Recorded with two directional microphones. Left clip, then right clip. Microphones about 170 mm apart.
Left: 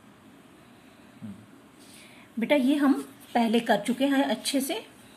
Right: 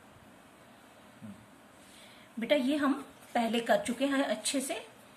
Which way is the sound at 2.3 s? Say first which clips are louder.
Left 5 dB; 30° left (ahead or behind).